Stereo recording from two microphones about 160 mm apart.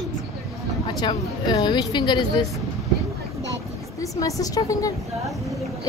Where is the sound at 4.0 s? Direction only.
20° left (ahead or behind).